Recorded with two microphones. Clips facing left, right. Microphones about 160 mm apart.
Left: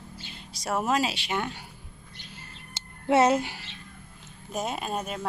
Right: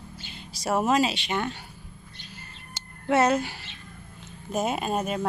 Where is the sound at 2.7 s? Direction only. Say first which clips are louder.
Left 1 dB; 25° left (ahead or behind).